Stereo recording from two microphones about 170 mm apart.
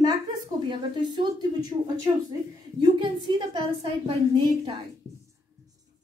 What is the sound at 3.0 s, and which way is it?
A woman's voice, 30° right (ahead or behind).